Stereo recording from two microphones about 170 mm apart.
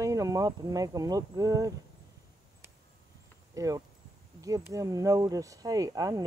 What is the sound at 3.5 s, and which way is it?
Speech, 20° right (ahead or behind).